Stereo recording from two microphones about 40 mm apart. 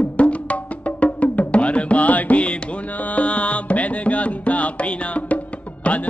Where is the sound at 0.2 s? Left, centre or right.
Left.